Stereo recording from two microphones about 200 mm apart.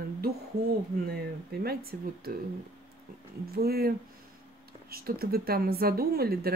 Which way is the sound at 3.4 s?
50° right (ahead or behind).